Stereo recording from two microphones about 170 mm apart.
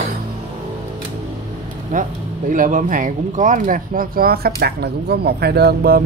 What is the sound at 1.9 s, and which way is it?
Speech, 50° right (ahead or behind).